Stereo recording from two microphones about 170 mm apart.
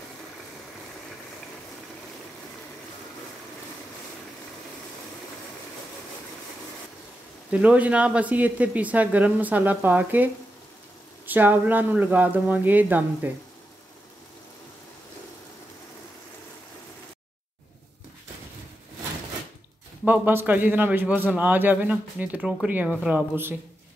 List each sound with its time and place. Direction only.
7.5 s a man's voice: 10° right (ahead or behind)
20.1 s a man's voice: 10° right (ahead or behind)